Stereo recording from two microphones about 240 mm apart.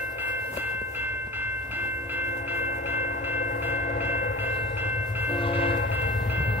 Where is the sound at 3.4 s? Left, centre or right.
Left.